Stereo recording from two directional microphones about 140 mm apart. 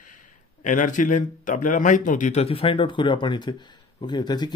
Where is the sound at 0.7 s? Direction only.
65° left (ahead or behind).